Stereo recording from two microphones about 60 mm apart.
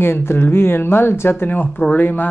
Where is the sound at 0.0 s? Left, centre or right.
Left.